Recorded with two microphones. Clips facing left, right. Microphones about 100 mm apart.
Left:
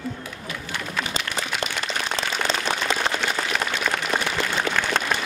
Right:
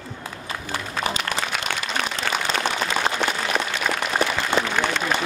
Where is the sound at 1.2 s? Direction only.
55° right (ahead or behind).